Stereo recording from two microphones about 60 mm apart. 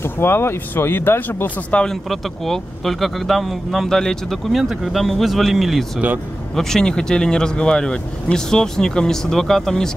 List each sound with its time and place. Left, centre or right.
0.0 s speech: left
1.9 s speech: centre
4.5 s speech: centre